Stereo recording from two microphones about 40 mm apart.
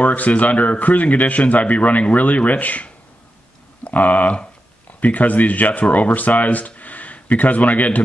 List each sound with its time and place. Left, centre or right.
0.0 s speech: left